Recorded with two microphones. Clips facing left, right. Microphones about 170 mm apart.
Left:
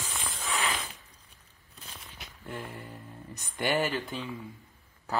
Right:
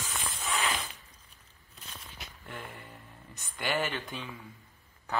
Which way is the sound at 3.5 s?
45° left (ahead or behind).